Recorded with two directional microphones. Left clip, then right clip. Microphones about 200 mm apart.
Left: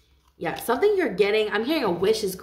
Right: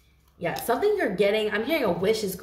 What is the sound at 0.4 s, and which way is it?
A woman's voice, 45° left (ahead or behind).